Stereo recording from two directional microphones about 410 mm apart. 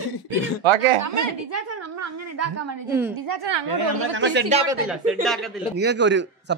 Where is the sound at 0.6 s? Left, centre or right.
Right.